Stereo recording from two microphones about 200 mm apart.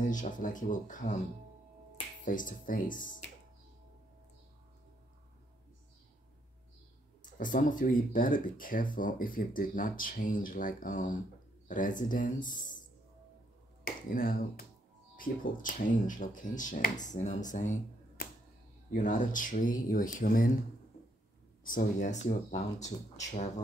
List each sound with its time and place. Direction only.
0.1 s speech: 40° left (ahead or behind)
2.2 s speech: 40° left (ahead or behind)
7.3 s speech: 40° left (ahead or behind)
13.8 s speech: 45° left (ahead or behind)
21.6 s speech: 40° left (ahead or behind)